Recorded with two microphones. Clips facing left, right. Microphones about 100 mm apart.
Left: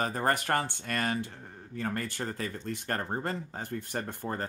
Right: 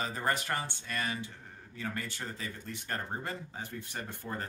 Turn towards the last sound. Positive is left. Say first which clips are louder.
# left 6 dB
turn(degrees=50)  # may be behind; listen again after turning